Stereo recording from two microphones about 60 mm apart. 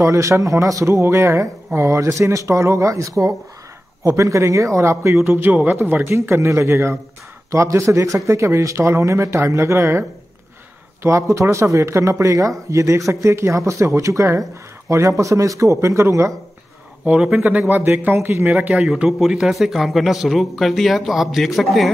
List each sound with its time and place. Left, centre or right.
0.0 s speech: right
5.8 s speech: right
17.2 s speech: centre
17.5 s speech: right
18.6 s speech: centre
19.0 s speech: centre